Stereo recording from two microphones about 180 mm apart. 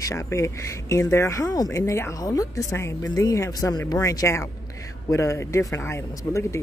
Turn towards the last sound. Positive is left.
turn(degrees=15)  # may be behind; listen again after turning